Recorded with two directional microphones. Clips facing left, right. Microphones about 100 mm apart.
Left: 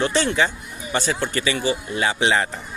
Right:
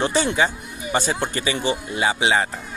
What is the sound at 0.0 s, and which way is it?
Speech, 15° right (ahead or behind).